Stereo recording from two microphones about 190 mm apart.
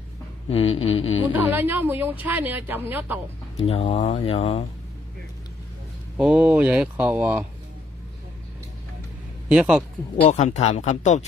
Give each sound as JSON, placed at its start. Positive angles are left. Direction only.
{"t": 0.5, "sound": "speech", "side_deg": 30}
{"t": 1.5, "sound": "speech", "side_deg": -10}
{"t": 3.6, "sound": "speech", "side_deg": 30}
{"t": 6.1, "sound": "speech", "side_deg": -5}
{"t": 9.5, "sound": "speech", "side_deg": -5}
{"t": 10.2, "sound": "speech", "side_deg": 40}